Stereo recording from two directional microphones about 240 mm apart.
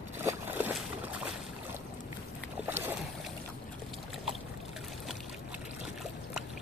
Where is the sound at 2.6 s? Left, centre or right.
Centre.